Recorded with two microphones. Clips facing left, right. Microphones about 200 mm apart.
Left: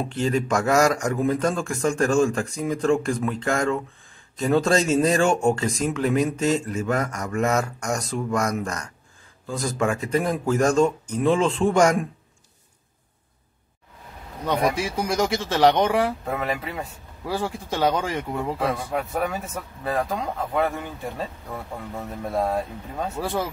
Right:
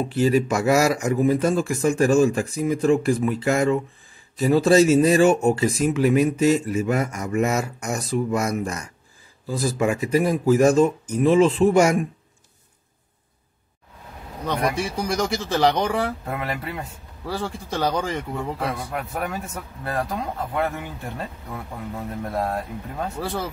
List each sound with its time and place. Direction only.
0.1 s speech: 5° right (ahead or behind)
14.4 s speech: centre (ahead or behind)
22.2 s speech: centre (ahead or behind)